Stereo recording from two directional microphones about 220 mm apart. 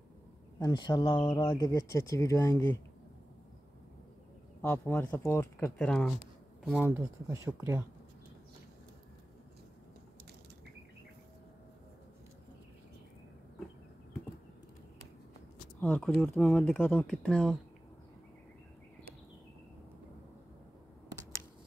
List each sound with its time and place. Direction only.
0.6 s speech: 20° left (ahead or behind)
4.6 s speech: 10° left (ahead or behind)
6.9 s speech: 10° right (ahead or behind)
15.8 s speech: 5° left (ahead or behind)